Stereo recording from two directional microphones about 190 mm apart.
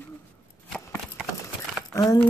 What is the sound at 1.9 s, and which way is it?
Speech, 15° left (ahead or behind).